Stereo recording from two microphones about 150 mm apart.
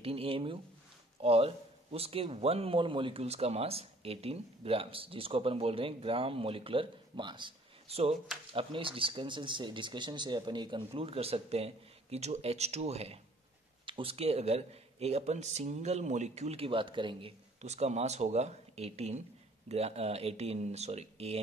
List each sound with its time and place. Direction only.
0.0 s a man's voice: 40° right (ahead or behind)
17.6 s speech: 45° right (ahead or behind)